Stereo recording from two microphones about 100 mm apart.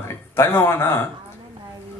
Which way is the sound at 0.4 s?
25° left (ahead or behind).